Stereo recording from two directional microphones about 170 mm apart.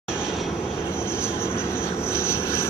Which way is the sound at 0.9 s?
15° left (ahead or behind).